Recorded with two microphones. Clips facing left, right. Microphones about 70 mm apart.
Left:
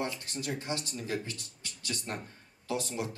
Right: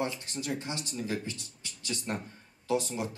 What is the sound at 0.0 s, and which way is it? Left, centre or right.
Speech, centre.